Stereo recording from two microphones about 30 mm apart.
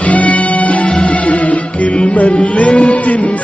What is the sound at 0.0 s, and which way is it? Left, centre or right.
Music, left.